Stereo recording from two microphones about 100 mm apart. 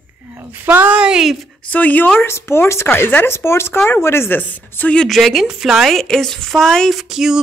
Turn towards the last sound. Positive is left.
turn(degrees=-5)  # may be behind; listen again after turning